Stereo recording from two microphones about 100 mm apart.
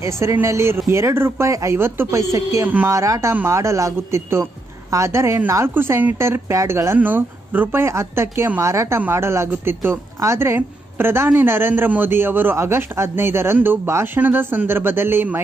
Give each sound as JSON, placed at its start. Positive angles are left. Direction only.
{"t": 0.0, "sound": "speech", "side_deg": -30}